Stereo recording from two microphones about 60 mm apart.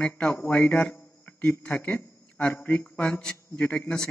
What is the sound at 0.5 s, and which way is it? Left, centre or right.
A man's voice, left.